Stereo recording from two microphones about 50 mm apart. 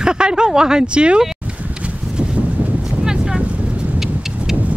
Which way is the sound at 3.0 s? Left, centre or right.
Centre.